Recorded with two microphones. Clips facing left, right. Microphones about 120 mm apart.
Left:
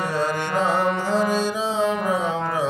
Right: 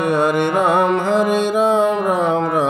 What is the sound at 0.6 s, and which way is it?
Music, 60° right (ahead or behind).